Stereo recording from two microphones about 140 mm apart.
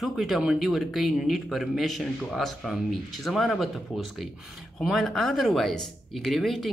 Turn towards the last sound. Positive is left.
turn(degrees=0)  # may be behind; listen again after turning